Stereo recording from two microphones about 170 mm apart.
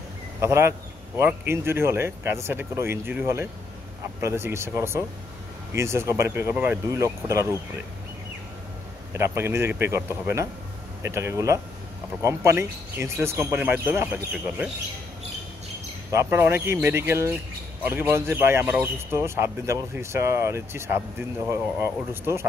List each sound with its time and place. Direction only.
0.4 s a man's voice: 15° right (ahead or behind)
9.1 s a man's voice: 15° right (ahead or behind)
16.1 s a man's voice: 15° right (ahead or behind)